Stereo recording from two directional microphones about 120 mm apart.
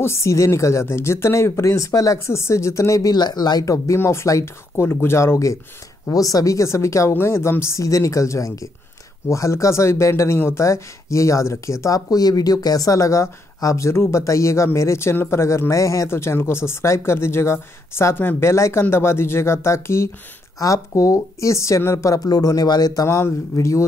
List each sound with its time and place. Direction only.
0.0 s speech: 25° left (ahead or behind)